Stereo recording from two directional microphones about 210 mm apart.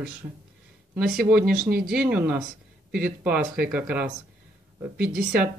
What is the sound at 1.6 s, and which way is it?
Speech, 45° right (ahead or behind).